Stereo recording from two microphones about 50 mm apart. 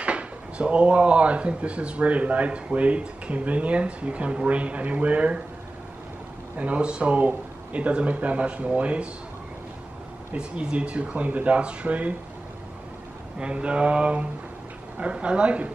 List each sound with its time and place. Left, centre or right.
0.0 s speech: right
6.5 s speech: right
10.3 s speech: right
13.4 s speech: right